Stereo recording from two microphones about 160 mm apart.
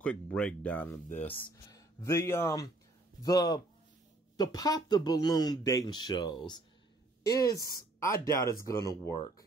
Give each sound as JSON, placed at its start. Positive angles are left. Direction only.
{"t": 0.0, "sound": "speech", "side_deg": 5}
{"t": 1.7, "sound": "speech", "side_deg": 20}